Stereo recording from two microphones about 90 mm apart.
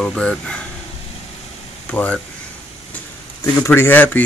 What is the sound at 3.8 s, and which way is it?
Speech, 20° left (ahead or behind).